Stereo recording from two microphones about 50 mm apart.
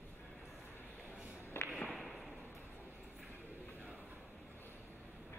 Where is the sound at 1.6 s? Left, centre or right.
Left.